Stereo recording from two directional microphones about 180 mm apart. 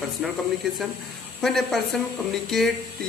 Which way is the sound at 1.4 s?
Centre (ahead or behind).